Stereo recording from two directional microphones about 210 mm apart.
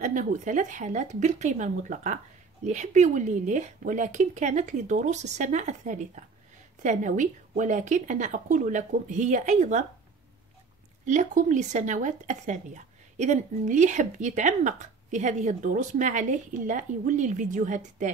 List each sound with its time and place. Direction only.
0.0 s speech: 35° right (ahead or behind)
11.1 s speech: 35° right (ahead or behind)